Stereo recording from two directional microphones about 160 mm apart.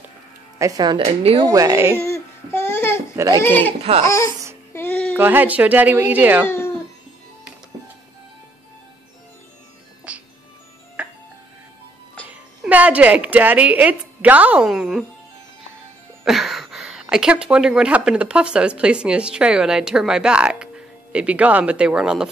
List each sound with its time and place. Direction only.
0.6 s speech: 25° right (ahead or behind)
1.4 s speech: 20° right (ahead or behind)
2.0 s child singing: 15° left (ahead or behind)
3.2 s speech: 25° right (ahead or behind)
3.4 s speech: 10° left (ahead or behind)
4.7 s a sound: 10° left (ahead or behind)
5.1 s a woman's voice: 10° right (ahead or behind)
6.4 s speech: 15° left (ahead or behind)
10.1 s music: 10° right (ahead or behind)
12.3 s speech: 10° right (ahead or behind)
16.3 s speech: centre (ahead or behind)